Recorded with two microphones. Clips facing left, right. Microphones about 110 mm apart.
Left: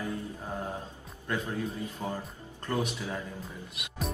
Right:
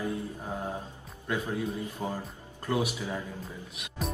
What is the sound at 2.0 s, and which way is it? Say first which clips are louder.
Speech: right 1 dB; 20° right (ahead or behind).